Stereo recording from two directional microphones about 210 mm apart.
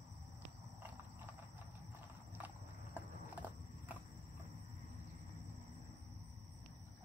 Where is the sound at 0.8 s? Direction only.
5° right (ahead or behind).